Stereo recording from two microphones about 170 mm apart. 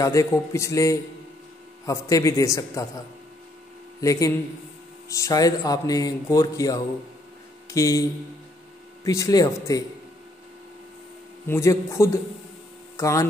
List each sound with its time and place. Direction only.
0.0 s a man's voice: 20° left (ahead or behind)
4.0 s a man's voice: 20° left (ahead or behind)
11.4 s a man's voice: 15° left (ahead or behind)